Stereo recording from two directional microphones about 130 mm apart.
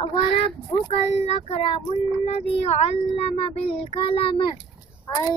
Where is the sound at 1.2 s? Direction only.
50° left (ahead or behind).